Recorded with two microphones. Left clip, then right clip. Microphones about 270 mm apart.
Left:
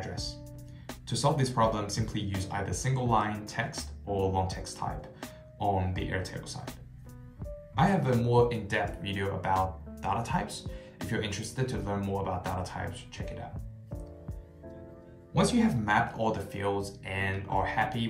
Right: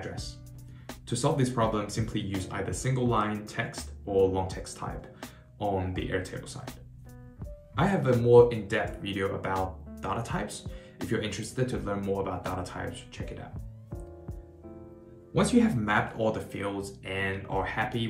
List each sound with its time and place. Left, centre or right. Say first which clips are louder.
0.0 s music: left 1 dB; centre
0.8 s speech: even; centre
15.3 s speech: right 2 dB; centre